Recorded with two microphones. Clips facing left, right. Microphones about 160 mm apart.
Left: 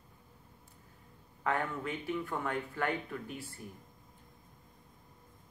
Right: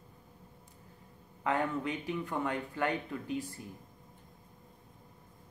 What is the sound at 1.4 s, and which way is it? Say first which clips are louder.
Speech: right 2 dB; 20° right (ahead or behind).